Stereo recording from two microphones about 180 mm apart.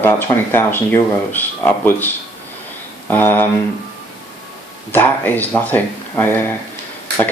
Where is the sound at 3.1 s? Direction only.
10° left (ahead or behind).